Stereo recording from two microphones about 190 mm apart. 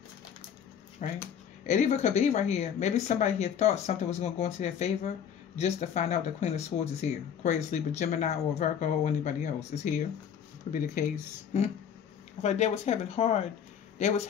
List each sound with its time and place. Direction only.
1.0 s speech: 40° left (ahead or behind)
12.4 s speech: 35° left (ahead or behind)